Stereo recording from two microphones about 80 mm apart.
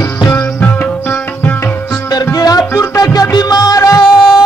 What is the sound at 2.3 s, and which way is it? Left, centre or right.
Music, left.